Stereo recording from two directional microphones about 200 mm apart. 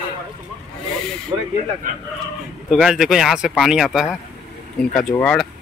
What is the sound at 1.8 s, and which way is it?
Speech, 40° right (ahead or behind).